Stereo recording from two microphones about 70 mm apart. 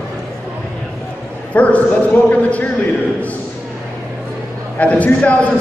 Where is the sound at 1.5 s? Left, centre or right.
Centre.